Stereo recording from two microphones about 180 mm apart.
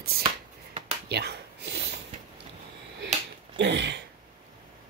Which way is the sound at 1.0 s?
65° right (ahead or behind).